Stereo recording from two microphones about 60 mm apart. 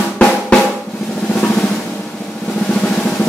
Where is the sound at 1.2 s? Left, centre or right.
Centre.